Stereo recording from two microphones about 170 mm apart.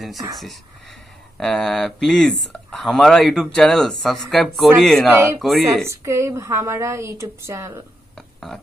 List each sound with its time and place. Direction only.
1.4 s speech: centre (ahead or behind)
5.9 s a woman's voice: 15° right (ahead or behind)